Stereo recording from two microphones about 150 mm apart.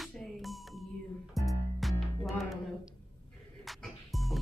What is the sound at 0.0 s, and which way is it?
Music, centre (ahead or behind).